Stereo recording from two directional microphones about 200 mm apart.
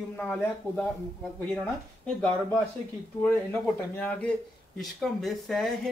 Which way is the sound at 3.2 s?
10° left (ahead or behind).